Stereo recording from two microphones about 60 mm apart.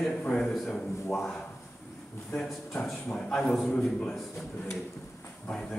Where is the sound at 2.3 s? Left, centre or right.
Centre.